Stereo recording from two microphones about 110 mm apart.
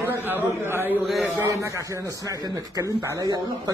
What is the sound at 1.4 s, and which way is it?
A man's voice, 25° right (ahead or behind).